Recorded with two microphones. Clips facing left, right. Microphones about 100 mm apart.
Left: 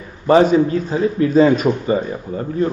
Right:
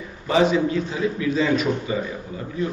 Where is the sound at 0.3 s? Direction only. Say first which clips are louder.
Left 7 dB; 45° left (ahead or behind).